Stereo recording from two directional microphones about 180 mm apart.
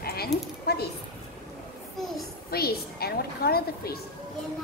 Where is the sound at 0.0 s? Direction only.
60° left (ahead or behind).